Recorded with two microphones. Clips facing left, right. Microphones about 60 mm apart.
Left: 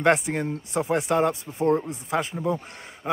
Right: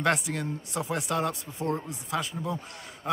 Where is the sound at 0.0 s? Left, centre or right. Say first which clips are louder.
Left 6 dB; left.